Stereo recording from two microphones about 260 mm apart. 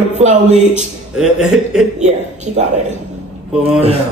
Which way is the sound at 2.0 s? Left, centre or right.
Right.